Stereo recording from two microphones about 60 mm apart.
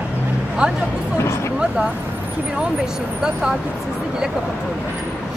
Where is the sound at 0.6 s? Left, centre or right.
Centre.